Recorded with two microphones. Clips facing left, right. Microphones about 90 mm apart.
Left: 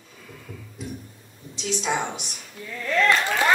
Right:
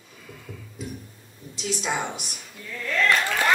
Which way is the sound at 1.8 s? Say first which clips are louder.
Left 2 dB; 5° right (ahead or behind).